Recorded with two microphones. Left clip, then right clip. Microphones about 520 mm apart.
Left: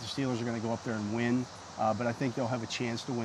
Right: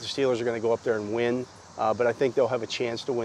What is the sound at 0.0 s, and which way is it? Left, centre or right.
Speech, right.